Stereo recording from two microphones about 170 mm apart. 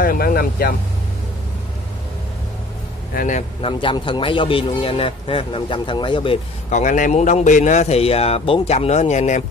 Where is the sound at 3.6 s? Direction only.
30° left (ahead or behind).